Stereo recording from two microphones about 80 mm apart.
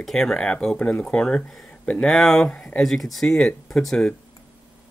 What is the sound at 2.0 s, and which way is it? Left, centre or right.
Speech, centre.